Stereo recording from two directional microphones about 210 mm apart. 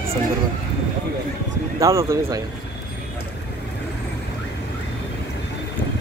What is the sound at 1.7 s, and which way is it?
Speech, 15° right (ahead or behind).